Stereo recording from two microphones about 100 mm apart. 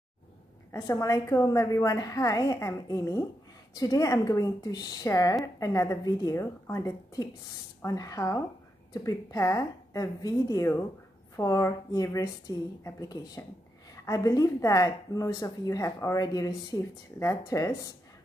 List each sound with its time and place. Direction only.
0.7 s speech: 35° left (ahead or behind)